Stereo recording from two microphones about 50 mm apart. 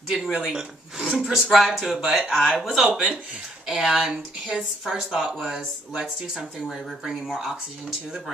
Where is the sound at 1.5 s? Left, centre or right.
Centre.